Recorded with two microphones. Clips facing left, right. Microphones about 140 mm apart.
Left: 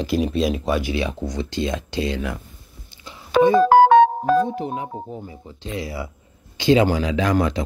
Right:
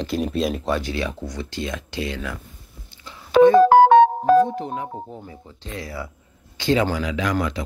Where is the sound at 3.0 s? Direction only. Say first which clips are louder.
Right 3 dB; 15° left (ahead or behind).